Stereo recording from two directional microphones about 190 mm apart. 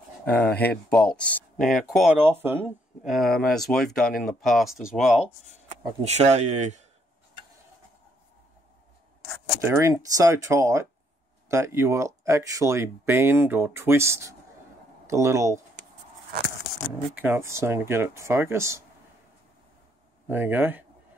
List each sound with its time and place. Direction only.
0.2 s speech: 5° left (ahead or behind)
2.4 s speech: 10° right (ahead or behind)
3.1 s speech: centre (ahead or behind)
5.7 s speech: 35° right (ahead or behind)
9.6 s speech: 15° right (ahead or behind)
17.1 s speech: 10° right (ahead or behind)
20.2 s speech: 10° right (ahead or behind)